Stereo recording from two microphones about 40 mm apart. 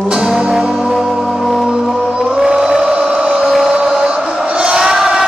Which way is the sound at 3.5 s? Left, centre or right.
Right.